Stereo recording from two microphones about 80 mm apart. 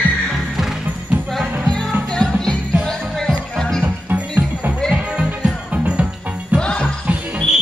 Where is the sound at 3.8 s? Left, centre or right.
Right.